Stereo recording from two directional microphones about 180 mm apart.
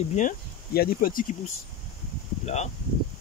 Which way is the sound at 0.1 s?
45° left (ahead or behind).